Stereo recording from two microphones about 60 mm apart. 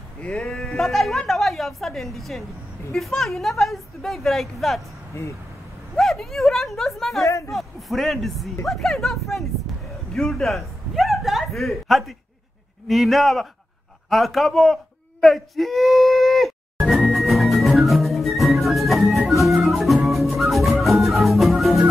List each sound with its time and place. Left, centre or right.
0.2 s speech: centre
0.5 s a woman's voice: centre
5.9 s a woman's voice: centre
7.2 s speech: left
7.5 s a woman's voice: centre
17.1 s music: centre